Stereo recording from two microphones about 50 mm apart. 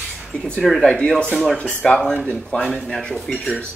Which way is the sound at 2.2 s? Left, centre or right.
Left.